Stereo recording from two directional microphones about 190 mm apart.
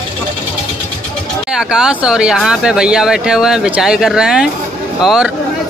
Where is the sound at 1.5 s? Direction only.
5° right (ahead or behind).